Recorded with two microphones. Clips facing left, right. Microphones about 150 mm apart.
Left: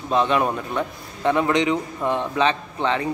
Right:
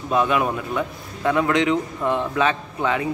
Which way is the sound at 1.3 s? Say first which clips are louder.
Right 1 dB; centre (ahead or behind).